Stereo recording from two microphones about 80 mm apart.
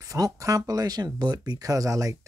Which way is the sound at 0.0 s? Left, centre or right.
Right.